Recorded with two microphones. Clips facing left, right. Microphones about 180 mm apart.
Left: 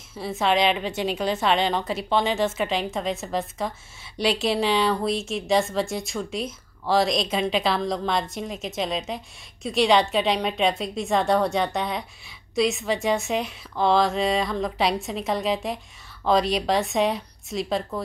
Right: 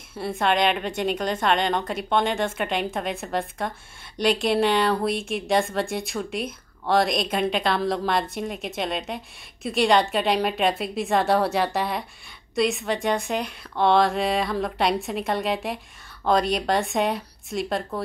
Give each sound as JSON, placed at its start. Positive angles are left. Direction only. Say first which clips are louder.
{"t": 0.1, "sound": "a woman's voice", "louder": "even", "side_deg": 5}
{"t": 5.1, "sound": "a woman's voice", "louder": "even", "side_deg": -55}
{"t": 5.5, "sound": "a woman's voice", "louder": "left 1 dB", "side_deg": 0}